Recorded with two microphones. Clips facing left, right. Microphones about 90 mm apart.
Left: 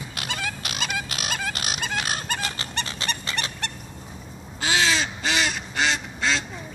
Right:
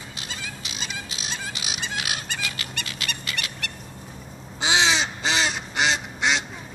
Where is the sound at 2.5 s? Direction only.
35° left (ahead or behind).